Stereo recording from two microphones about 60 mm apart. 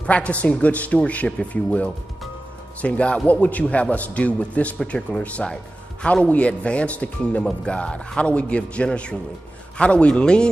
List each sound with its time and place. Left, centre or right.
0.0 s a man's voice: left
4.7 s a man's voice: centre